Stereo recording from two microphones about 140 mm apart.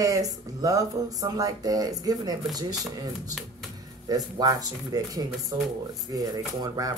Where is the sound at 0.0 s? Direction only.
25° right (ahead or behind).